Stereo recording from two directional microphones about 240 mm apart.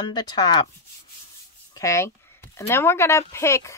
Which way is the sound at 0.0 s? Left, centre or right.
Centre.